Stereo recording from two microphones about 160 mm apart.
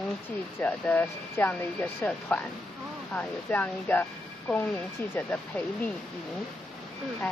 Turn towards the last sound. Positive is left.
turn(degrees=5)  # may be behind; listen again after turning